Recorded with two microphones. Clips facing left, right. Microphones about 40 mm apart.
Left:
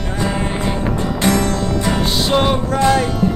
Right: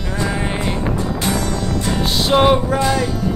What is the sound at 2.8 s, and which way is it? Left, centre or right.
Speech, left.